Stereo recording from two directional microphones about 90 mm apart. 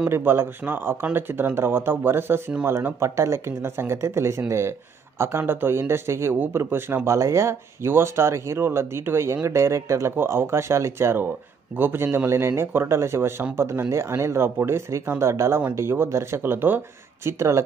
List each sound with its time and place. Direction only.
0.1 s speech: 25° right (ahead or behind)